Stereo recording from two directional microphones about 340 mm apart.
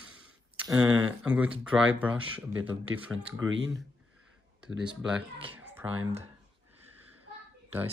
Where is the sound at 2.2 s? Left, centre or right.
Right.